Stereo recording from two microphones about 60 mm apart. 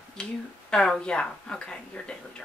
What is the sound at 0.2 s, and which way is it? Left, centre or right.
Speech, centre.